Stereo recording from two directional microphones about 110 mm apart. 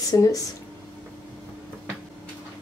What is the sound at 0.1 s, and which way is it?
Speech, 30° left (ahead or behind).